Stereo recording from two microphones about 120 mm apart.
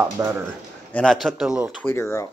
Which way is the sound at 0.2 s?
30° right (ahead or behind).